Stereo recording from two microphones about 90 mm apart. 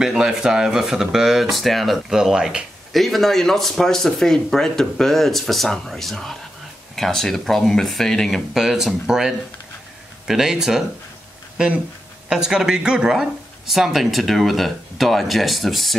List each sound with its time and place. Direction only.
0.0 s speech: 5° right (ahead or behind)
12.3 s speech: 5° right (ahead or behind)